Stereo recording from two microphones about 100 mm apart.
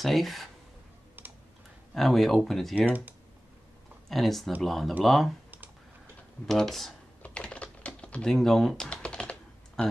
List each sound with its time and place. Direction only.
0.0 s speech: centre (ahead or behind)
1.2 s typing: 20° right (ahead or behind)
2.0 s speech: centre (ahead or behind)
4.1 s speech: centre (ahead or behind)
6.4 s speech: 5° left (ahead or behind)
7.2 s typing: 10° left (ahead or behind)